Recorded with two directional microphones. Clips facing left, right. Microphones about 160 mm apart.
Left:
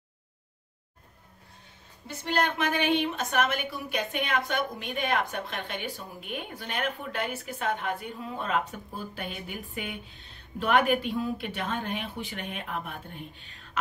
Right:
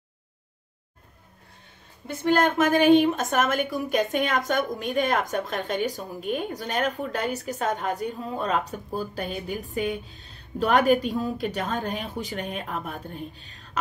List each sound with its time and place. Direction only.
2.0 s a woman's voice: 50° right (ahead or behind)